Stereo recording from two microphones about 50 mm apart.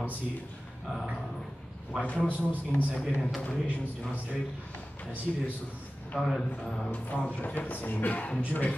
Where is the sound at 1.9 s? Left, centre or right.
Right.